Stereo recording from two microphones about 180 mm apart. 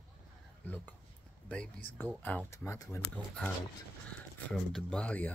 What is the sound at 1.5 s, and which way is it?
Speech, 10° left (ahead or behind).